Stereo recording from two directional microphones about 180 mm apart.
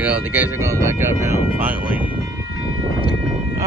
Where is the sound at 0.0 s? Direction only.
10° right (ahead or behind).